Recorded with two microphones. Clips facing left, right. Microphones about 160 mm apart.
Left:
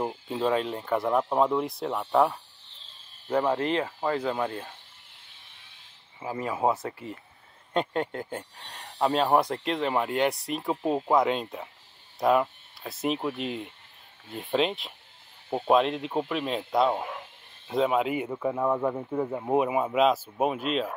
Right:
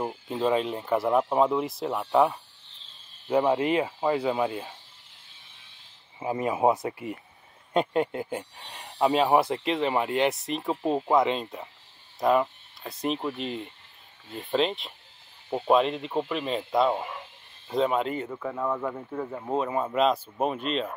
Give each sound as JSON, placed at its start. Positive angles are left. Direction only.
{"t": 0.3, "sound": "speech", "side_deg": 0}
{"t": 6.1, "sound": "speech", "side_deg": -20}